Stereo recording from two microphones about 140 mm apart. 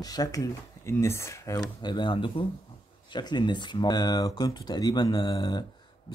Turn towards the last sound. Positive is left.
turn(degrees=30)  # may be behind; listen again after turning